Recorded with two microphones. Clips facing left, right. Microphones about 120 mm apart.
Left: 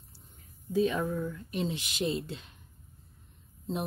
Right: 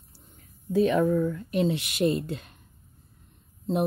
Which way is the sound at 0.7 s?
75° right (ahead or behind).